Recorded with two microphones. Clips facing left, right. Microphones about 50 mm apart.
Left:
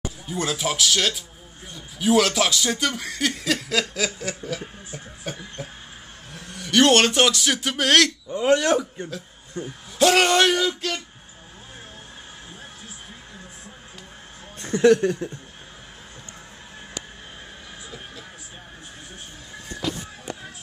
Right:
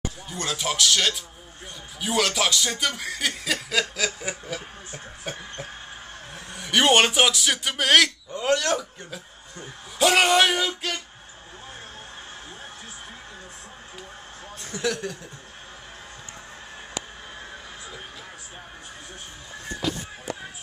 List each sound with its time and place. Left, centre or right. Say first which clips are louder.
0.3 s speech: left 3 dB; centre
4.2 s speech: left 2 dB; centre
5.3 s speech: left 1 dB; centre
6.3 s a man's voice: left 3 dB; centre
8.3 s speech: left 4 dB; left
9.9 s speech: left 1 dB; centre
14.6 s speech: left 12 dB; left